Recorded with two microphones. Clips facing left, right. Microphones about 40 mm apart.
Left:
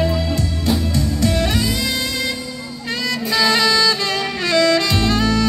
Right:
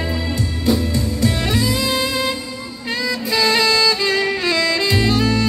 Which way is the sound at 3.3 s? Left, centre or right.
Centre.